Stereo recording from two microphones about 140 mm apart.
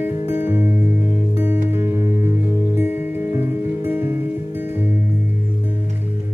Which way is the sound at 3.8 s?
15° right (ahead or behind).